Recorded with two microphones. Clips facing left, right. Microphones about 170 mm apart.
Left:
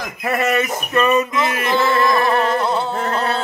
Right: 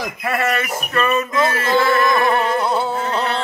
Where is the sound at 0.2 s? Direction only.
20° left (ahead or behind).